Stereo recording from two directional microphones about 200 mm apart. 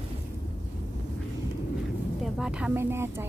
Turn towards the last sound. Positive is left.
turn(degrees=-10)  # may be behind; listen again after turning